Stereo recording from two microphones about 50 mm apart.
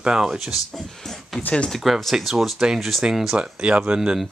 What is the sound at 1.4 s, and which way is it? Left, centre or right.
Speech, left.